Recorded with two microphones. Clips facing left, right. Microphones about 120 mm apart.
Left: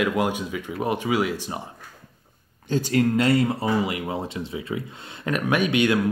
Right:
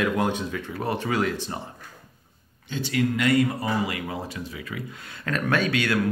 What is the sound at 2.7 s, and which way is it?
Speech, 40° left (ahead or behind).